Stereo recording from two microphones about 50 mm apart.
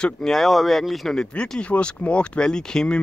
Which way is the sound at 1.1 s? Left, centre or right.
Centre.